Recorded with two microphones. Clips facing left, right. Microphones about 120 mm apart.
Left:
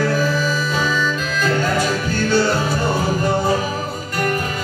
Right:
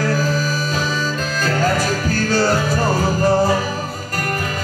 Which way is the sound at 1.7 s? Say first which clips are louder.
Even; 40° right (ahead or behind).